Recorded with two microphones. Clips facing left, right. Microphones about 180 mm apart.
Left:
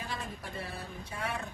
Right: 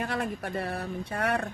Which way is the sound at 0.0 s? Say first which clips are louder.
Right 9 dB; 65° right (ahead or behind).